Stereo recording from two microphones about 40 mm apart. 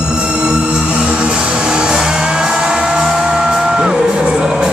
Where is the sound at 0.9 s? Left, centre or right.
Right.